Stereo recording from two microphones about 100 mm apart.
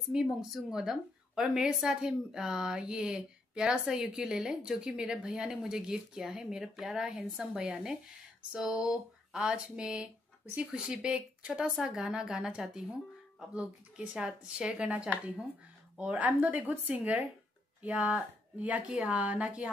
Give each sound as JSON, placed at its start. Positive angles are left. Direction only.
{"t": 0.1, "sound": "a woman's voice", "side_deg": -5}